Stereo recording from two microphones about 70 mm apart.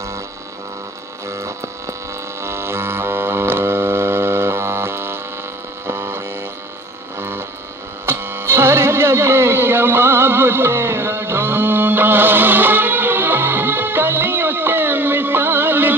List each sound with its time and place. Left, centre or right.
1.3 s mains hum: right
2.4 s music: right
5.9 s mains hum: right
8.0 s music: right